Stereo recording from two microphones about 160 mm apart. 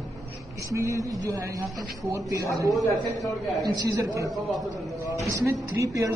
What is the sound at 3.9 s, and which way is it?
Speech, 20° right (ahead or behind).